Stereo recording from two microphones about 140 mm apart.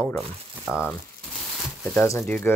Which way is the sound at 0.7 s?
5° right (ahead or behind).